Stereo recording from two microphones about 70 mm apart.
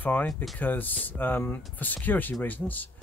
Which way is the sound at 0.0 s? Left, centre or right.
Left.